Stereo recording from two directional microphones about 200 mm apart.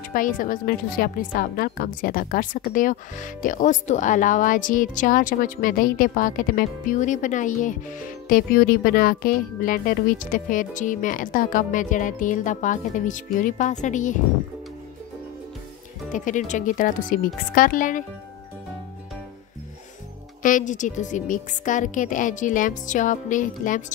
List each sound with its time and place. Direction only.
0.1 s a woman's voice: 40° left (ahead or behind)
16.1 s speech: 40° left (ahead or behind)
20.4 s speech: 40° left (ahead or behind)